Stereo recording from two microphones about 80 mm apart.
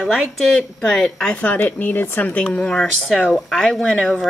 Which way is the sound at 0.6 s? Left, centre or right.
Centre.